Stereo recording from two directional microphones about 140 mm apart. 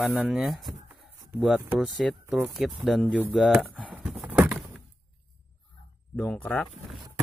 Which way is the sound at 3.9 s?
10° right (ahead or behind).